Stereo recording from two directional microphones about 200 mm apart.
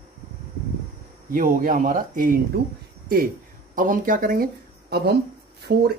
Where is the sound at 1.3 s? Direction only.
45° right (ahead or behind).